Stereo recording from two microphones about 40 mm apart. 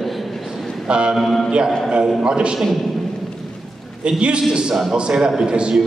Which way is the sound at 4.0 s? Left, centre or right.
Right.